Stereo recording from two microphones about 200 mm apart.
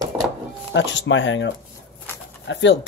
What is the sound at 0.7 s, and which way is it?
Speech, 65° left (ahead or behind).